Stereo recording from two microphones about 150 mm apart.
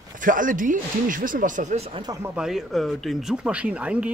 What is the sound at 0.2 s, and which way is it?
Speech, 60° right (ahead or behind).